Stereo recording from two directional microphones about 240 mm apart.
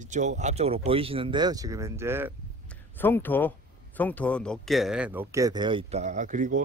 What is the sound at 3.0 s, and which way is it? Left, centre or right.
Speech, centre.